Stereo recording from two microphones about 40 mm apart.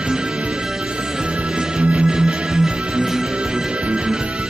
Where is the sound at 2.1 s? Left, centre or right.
Centre.